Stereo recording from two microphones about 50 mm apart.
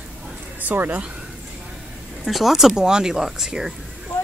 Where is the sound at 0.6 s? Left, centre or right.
Right.